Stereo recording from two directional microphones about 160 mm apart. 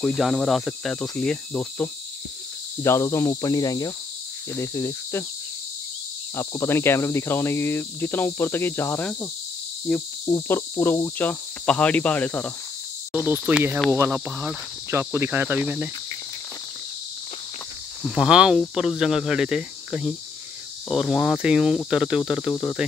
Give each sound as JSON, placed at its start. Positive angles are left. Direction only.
{"t": 0.0, "sound": "speech", "side_deg": 0}
{"t": 2.8, "sound": "cricket", "side_deg": 15}
{"t": 4.6, "sound": "speech", "side_deg": 15}
{"t": 6.3, "sound": "speech", "side_deg": 15}
{"t": 13.1, "sound": "speech", "side_deg": -10}
{"t": 18.0, "sound": "speech", "side_deg": 0}
{"t": 22.5, "sound": "speech", "side_deg": 10}